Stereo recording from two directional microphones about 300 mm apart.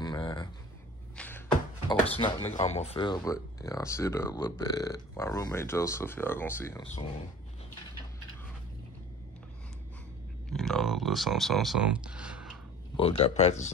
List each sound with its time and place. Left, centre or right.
0.0 s a sound: centre
1.9 s speech: centre
10.5 s speech: centre
12.9 s speech: centre